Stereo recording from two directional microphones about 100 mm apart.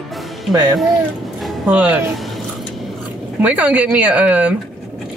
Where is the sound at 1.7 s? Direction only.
15° right (ahead or behind).